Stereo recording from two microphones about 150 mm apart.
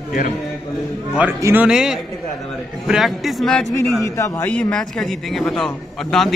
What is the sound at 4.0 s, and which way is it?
A man's voice, 20° left (ahead or behind).